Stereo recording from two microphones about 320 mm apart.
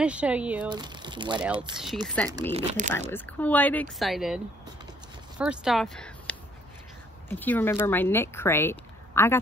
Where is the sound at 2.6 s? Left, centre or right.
Right.